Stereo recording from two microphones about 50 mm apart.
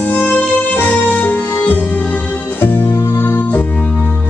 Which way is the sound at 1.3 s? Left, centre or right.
Left.